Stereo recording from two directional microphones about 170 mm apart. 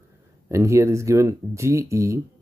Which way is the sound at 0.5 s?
15° right (ahead or behind).